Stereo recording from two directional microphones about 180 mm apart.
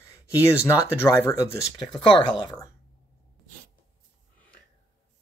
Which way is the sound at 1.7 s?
25° left (ahead or behind).